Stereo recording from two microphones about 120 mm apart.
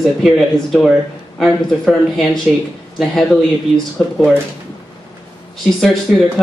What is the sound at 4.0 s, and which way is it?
Speech, 5° left (ahead or behind).